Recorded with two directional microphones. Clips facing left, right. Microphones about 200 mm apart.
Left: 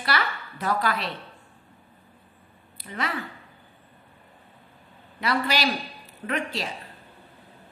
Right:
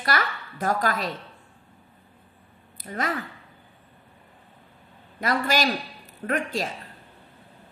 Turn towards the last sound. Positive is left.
turn(degrees=-45)  # may be behind; listen again after turning